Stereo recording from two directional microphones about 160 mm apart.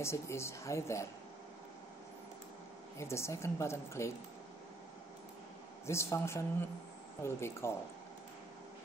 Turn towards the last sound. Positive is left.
turn(degrees=15)  # may be behind; listen again after turning